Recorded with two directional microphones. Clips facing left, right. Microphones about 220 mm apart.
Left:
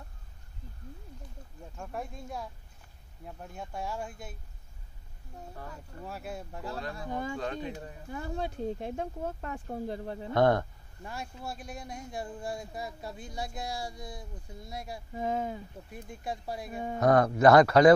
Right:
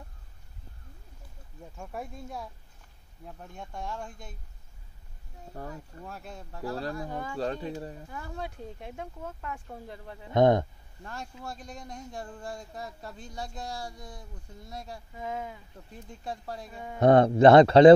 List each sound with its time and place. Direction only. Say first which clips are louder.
1.8 s speech: even; centre (ahead or behind)
6.0 s speech: left 5 dB; 5° left (ahead or behind)
6.7 s speech: right 3 dB; 35° right (ahead or behind)
8.1 s speech: left 4 dB; 25° left (ahead or behind)
10.3 s speech: right 3 dB; 20° right (ahead or behind)
11.1 s speech: left 1 dB; 10° left (ahead or behind)
15.1 s speech: left 5 dB; 35° left (ahead or behind)
15.9 s speech: left 1 dB; 10° left (ahead or behind)
17.0 s speech: right 4 dB; 25° right (ahead or behind)